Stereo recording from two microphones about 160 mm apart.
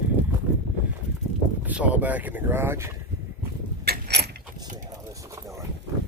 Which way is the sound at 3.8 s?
85° right.